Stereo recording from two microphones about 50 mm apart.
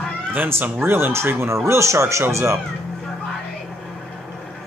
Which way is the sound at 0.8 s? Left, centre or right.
Right.